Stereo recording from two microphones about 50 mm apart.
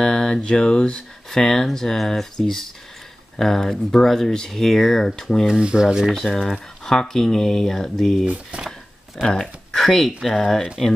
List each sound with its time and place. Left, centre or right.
0.0 s speech: centre
5.5 s speech: centre
6.1 s speech: centre
8.3 s speech: right
8.6 s a sound: centre
9.3 s speech: centre